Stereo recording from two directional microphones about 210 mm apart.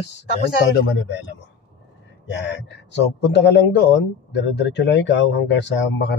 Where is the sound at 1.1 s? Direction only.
55° left (ahead or behind).